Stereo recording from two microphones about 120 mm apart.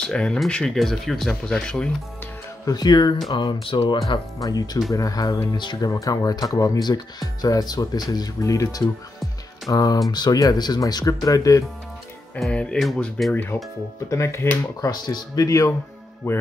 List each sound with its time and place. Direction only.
0.0 s speech: 5° left (ahead or behind)
2.6 s speech: 35° left (ahead or behind)
4.4 s speech: 30° left (ahead or behind)
12.4 s speech: 10° left (ahead or behind)
14.9 s speech: 35° left (ahead or behind)